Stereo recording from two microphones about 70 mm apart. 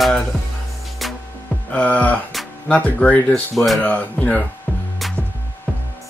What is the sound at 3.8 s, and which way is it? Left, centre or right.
Speech, centre.